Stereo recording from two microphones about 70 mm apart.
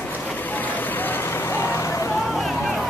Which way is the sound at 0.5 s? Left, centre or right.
Left.